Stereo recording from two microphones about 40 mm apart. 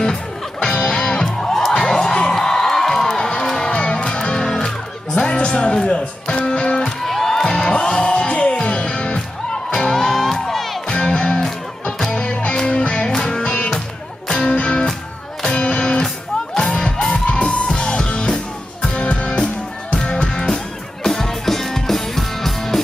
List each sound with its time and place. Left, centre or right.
0.0 s music: centre
3.7 s music: left
7.1 s music: centre
10.9 s music: left
12.6 s music: left
13.4 s music: left; by 22.8 s centre